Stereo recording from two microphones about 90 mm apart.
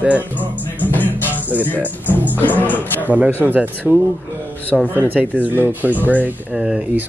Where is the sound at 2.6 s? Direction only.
20° left (ahead or behind).